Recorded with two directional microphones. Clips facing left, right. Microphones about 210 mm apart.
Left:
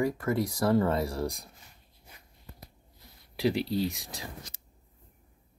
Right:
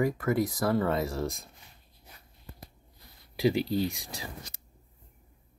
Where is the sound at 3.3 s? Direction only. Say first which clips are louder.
Right 2 dB; centre (ahead or behind).